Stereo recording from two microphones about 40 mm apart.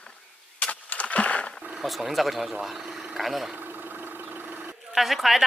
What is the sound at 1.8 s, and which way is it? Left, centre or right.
A woman's voice, centre.